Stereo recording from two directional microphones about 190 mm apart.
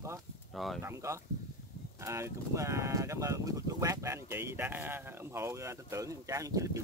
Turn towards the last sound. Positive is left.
turn(degrees=-15)  # may be behind; listen again after turning